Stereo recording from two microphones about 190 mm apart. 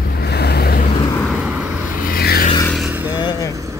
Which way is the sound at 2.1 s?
55° left (ahead or behind).